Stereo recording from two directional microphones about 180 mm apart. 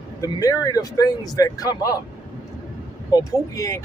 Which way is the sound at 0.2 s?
20° left (ahead or behind).